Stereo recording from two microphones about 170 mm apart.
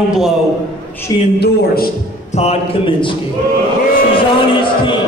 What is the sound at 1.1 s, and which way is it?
Speech, 25° left (ahead or behind).